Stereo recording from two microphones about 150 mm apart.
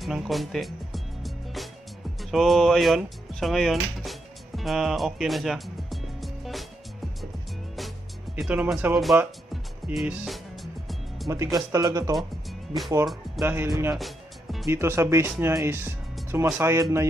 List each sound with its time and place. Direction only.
0.0 s music: centre (ahead or behind)
2.3 s speech: centre (ahead or behind)
8.4 s speech: 5° right (ahead or behind)
9.8 s music: 5° right (ahead or behind)
11.2 s speech: 20° right (ahead or behind)
12.2 s music: centre (ahead or behind)
13.4 s speech: 15° right (ahead or behind)
13.9 s music: centre (ahead or behind)
14.7 s speech: 15° right (ahead or behind)